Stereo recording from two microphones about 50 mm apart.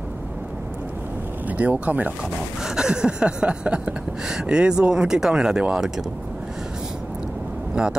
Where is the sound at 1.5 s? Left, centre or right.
Right.